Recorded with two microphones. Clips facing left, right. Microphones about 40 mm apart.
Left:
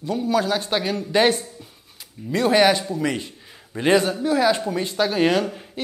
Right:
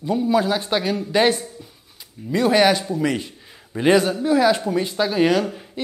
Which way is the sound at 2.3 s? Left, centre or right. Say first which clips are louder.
Right 1 dB; centre.